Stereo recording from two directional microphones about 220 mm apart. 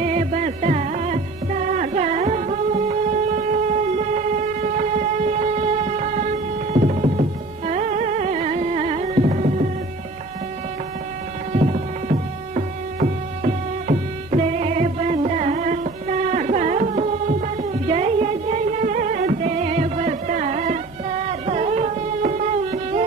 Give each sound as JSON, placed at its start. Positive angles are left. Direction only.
{"t": 0.0, "sound": "music", "side_deg": -30}
{"t": 3.9, "sound": "train", "side_deg": -35}
{"t": 11.5, "sound": "music", "side_deg": -30}